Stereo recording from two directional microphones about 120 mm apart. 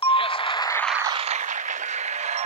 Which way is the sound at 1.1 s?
60° right (ahead or behind).